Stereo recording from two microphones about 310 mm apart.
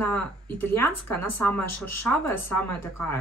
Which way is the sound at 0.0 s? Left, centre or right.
Centre.